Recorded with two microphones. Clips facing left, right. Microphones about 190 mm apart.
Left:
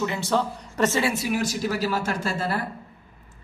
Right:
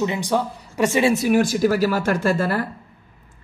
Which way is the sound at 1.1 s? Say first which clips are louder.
Right 8 dB; 50° right (ahead or behind).